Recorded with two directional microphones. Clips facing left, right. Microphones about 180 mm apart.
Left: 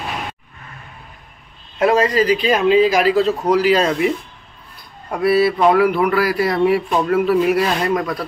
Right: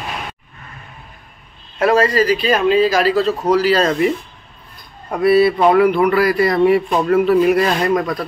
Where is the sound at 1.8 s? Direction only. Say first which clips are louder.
Right 1 dB; 15° left (ahead or behind).